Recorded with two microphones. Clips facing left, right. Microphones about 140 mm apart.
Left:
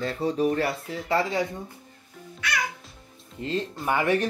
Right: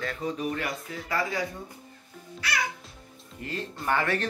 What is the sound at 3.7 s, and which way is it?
Speech, 10° left (ahead or behind).